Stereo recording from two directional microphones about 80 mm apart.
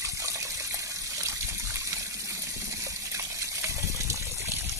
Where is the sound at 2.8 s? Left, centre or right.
Right.